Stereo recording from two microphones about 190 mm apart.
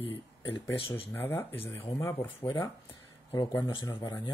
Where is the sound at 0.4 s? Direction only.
25° left (ahead or behind).